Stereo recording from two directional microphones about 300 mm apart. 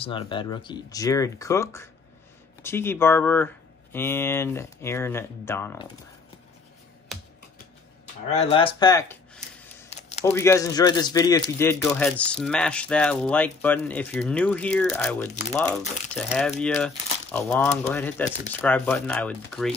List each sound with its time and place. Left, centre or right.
0.0 s speech: centre
7.1 s computer keyboard: centre
8.3 s speech: centre
9.8 s a sound: left
10.2 s speech: centre